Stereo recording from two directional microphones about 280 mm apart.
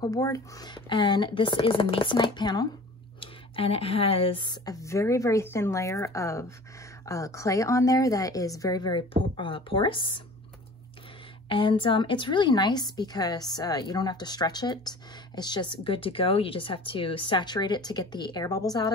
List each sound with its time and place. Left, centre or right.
0.0 s a woman's voice: centre
11.4 s a woman's voice: centre